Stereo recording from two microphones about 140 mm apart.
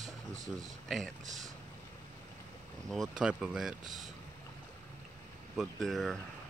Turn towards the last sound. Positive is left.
turn(degrees=0)  # may be behind; listen again after turning